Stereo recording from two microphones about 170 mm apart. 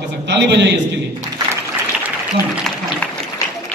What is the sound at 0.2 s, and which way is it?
Speech, 90° right.